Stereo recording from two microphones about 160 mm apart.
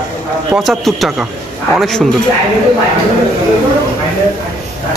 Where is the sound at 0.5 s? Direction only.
Centre (ahead or behind).